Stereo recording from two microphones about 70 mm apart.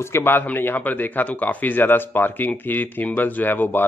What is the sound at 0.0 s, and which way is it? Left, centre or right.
Speech, left.